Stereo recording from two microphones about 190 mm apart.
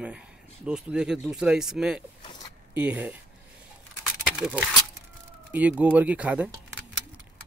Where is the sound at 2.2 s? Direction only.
25° left (ahead or behind).